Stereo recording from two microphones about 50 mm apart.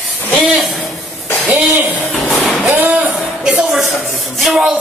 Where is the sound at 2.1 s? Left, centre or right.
Centre.